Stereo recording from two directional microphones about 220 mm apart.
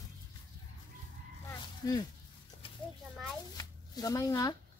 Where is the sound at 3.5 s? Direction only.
15° left (ahead or behind).